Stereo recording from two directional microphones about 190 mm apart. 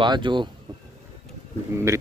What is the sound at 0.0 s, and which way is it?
Speech, 25° right (ahead or behind).